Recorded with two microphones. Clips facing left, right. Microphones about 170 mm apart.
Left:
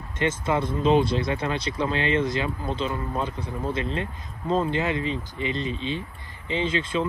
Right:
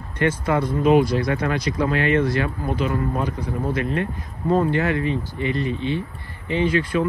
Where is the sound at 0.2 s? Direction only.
25° left (ahead or behind).